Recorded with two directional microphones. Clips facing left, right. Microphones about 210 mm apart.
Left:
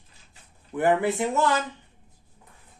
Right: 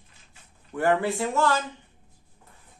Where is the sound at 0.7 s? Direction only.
20° left (ahead or behind).